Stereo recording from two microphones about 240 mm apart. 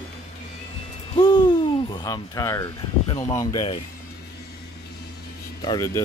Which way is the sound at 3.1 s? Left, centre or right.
Centre.